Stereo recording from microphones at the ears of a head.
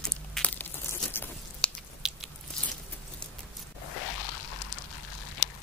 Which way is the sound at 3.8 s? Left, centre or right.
Left.